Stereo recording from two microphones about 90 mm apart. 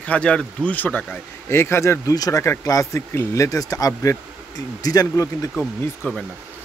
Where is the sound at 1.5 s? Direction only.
30° left (ahead or behind).